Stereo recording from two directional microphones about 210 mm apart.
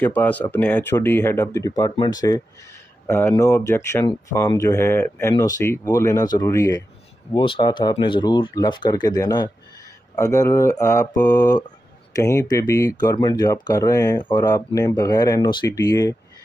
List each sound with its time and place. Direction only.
0.0 s speech: 10° left (ahead or behind)